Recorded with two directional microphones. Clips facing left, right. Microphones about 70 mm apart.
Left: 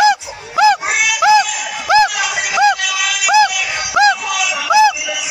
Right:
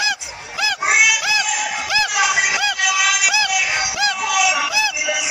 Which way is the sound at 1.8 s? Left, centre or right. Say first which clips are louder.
Left 12 dB; left.